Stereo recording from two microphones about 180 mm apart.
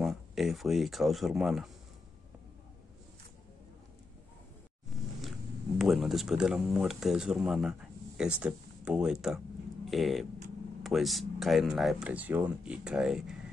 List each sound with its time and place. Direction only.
0.0 s speech: centre (ahead or behind)
5.8 s speech: centre (ahead or behind)